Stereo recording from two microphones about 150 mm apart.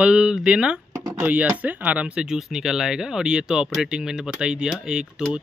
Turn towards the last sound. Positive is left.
turn(degrees=-5)  # may be behind; listen again after turning